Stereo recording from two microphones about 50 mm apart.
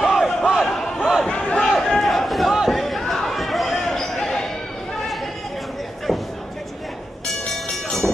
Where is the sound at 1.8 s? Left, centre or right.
Centre.